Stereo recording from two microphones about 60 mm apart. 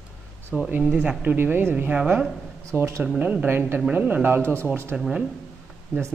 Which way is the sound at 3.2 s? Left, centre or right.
Right.